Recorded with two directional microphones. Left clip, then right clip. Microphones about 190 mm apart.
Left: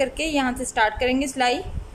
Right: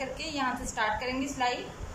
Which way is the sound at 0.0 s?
50° left (ahead or behind).